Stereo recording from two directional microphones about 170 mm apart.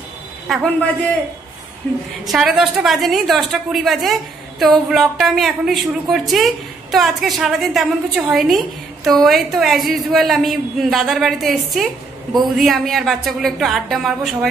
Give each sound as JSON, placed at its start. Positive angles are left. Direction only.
{"t": 0.5, "sound": "a woman's voice", "side_deg": 0}
{"t": 1.8, "sound": "a woman's voice", "side_deg": 5}